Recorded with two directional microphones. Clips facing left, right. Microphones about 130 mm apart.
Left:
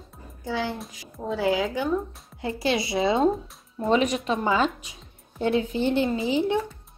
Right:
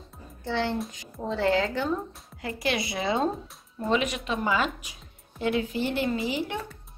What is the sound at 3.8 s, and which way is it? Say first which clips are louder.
A woman's voice: left 4 dB; 35° left (ahead or behind).